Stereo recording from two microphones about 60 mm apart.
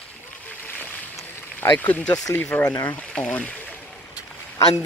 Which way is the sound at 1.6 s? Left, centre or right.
Left.